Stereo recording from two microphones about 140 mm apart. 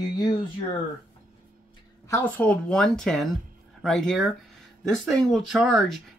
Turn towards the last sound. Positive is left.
turn(degrees=0)  # may be behind; listen again after turning